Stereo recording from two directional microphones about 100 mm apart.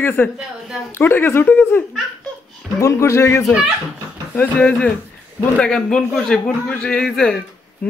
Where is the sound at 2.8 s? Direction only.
30° left (ahead or behind).